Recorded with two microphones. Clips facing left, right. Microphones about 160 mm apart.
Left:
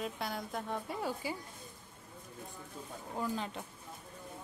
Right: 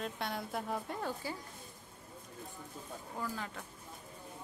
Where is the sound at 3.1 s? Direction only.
20° left (ahead or behind).